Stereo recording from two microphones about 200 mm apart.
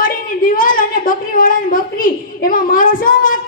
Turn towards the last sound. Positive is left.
turn(degrees=45)  # may be behind; listen again after turning